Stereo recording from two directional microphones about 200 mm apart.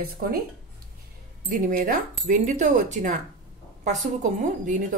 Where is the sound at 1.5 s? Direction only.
40° right (ahead or behind).